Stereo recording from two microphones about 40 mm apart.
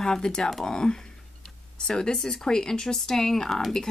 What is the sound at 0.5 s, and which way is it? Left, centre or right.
Speech, centre.